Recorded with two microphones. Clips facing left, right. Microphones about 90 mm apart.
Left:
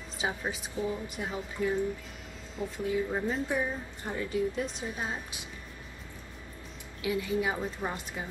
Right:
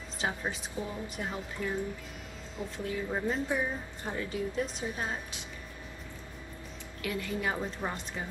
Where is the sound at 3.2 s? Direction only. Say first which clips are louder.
Even; 15° right (ahead or behind).